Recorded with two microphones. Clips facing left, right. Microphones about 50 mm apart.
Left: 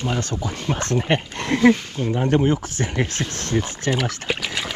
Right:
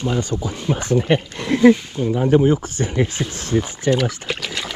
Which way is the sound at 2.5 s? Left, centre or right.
Centre.